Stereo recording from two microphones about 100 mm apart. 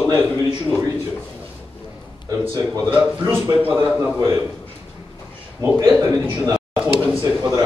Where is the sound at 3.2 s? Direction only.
25° right (ahead or behind).